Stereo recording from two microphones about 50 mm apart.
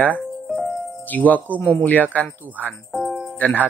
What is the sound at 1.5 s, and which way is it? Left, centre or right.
Speech, right.